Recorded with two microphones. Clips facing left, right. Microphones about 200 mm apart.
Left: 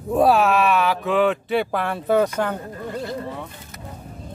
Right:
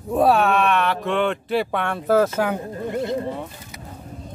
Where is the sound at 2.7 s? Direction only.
20° right (ahead or behind).